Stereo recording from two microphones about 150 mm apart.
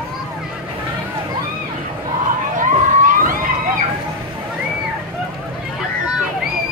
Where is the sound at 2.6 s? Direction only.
60° right (ahead or behind).